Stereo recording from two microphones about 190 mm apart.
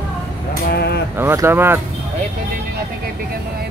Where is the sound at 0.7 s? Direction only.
60° left (ahead or behind).